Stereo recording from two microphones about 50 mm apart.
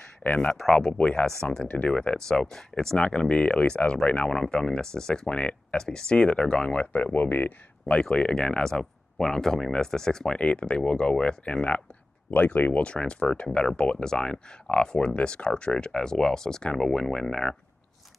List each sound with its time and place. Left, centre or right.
0.9 s speech: left
8.0 s speech: centre
10.3 s speech: left